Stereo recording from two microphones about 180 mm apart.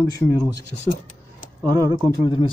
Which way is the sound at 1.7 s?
20° right (ahead or behind).